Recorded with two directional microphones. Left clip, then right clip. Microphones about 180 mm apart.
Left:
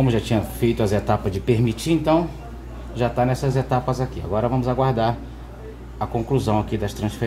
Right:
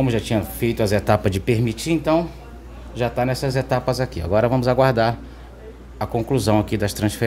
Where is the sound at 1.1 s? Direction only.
40° right (ahead or behind).